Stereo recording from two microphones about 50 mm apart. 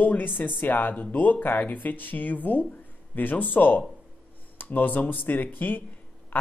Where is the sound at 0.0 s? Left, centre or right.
Left.